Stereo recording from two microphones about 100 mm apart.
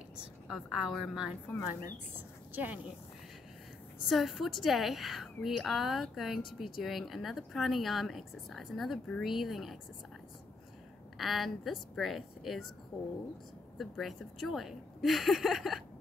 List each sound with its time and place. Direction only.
0.5 s speech: 5° right (ahead or behind)
2.5 s speech: 20° right (ahead or behind)
4.0 s speech: centre (ahead or behind)
11.1 s speech: centre (ahead or behind)
13.7 s speech: centre (ahead or behind)